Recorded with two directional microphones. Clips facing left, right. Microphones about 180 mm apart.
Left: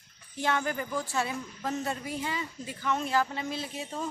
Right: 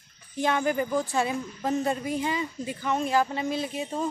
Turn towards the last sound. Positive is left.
turn(degrees=-15)  # may be behind; listen again after turning